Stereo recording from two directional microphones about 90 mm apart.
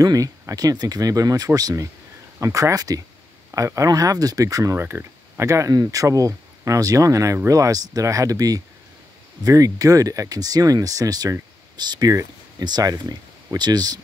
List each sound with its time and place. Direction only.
0.0 s speech: 40° right (ahead or behind)
4.7 s speech: 25° right (ahead or behind); by 13.9 s 50° right (ahead or behind)